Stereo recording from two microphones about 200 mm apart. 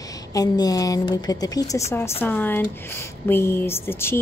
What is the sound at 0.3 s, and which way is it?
Speech, 20° left (ahead or behind).